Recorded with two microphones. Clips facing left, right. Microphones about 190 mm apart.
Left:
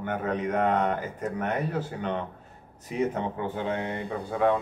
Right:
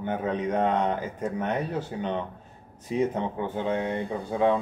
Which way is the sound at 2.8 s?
25° right (ahead or behind).